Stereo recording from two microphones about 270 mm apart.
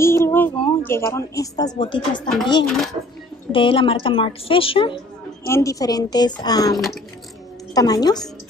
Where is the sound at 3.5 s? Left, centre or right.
Centre.